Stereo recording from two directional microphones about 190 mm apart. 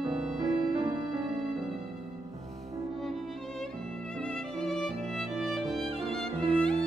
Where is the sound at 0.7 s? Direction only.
20° right (ahead or behind).